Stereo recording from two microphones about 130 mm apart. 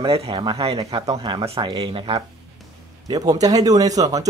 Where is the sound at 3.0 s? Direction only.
30° right (ahead or behind).